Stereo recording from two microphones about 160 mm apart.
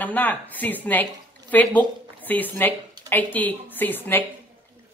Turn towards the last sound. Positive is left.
turn(degrees=10)  # may be behind; listen again after turning